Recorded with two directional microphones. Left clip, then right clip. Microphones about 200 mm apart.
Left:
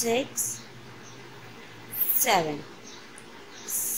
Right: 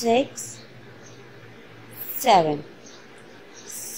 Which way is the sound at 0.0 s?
20° right (ahead or behind).